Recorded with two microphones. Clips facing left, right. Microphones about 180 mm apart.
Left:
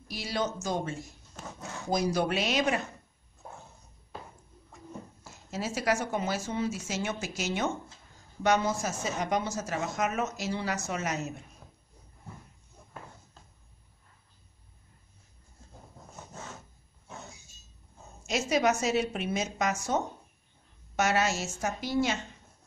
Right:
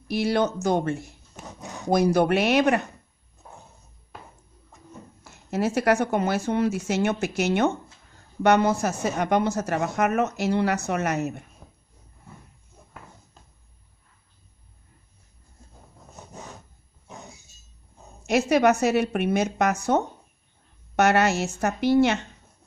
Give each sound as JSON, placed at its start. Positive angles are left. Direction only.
{"t": 0.1, "sound": "a woman's voice", "side_deg": -60}
{"t": 1.3, "sound": "a sound", "side_deg": -15}
{"t": 1.9, "sound": "a woman's voice", "side_deg": -60}
{"t": 5.2, "sound": "a woman's voice", "side_deg": -60}
{"t": 16.2, "sound": "a sound", "side_deg": -15}
{"t": 18.2, "sound": "a woman's voice", "side_deg": -60}